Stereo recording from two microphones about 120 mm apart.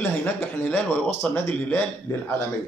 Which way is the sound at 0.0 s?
15° left (ahead or behind).